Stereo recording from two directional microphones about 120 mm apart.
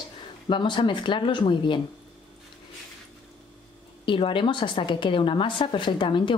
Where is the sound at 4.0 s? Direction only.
45° left (ahead or behind).